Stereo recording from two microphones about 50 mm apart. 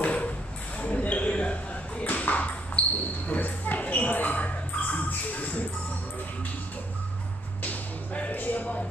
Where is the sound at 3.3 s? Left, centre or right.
Left.